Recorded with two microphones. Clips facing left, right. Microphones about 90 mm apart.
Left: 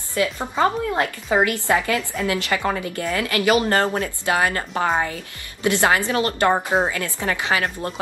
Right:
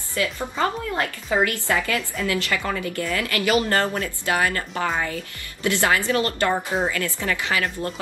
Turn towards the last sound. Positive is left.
turn(degrees=25)  # may be behind; listen again after turning